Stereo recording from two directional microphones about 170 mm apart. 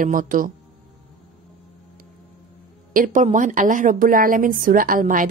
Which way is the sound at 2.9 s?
50° right (ahead or behind).